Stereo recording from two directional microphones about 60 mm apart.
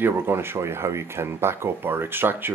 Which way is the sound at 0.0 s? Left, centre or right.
Right.